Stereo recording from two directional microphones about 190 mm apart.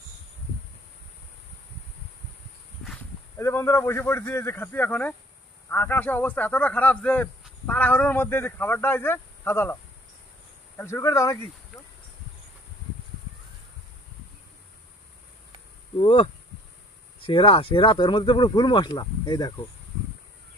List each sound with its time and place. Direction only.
3.3 s speech: 15° left (ahead or behind)
10.8 s speech: 15° left (ahead or behind)
16.0 s speech: 30° left (ahead or behind)